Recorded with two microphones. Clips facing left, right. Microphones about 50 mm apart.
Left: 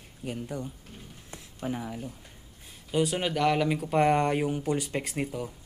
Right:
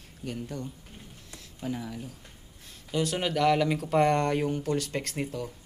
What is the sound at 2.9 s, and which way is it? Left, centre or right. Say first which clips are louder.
Speech: left 2 dB; centre.